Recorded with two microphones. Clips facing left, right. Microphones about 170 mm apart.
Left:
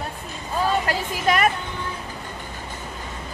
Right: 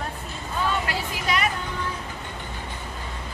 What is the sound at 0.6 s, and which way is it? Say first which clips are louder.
Speech: left 4 dB; 40° left (ahead or behind).